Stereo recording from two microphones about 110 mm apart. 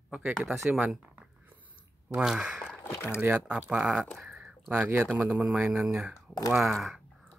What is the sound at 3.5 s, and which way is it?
Speech, 10° right (ahead or behind).